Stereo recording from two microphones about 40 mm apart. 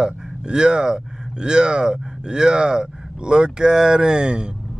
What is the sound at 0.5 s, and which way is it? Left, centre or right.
Speech, right.